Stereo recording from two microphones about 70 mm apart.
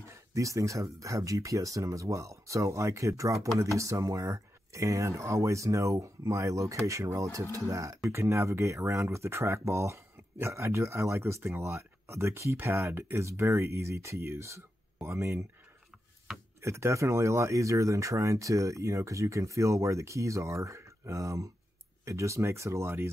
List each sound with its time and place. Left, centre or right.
0.1 s speech: right
16.3 s a sound: centre
16.6 s speech: right